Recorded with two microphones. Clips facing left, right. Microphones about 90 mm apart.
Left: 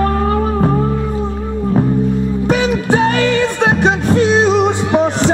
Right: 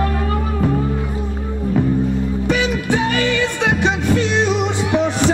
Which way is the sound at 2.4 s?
50° left (ahead or behind).